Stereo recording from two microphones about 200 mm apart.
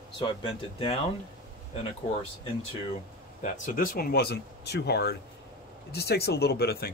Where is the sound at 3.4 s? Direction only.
40° left (ahead or behind).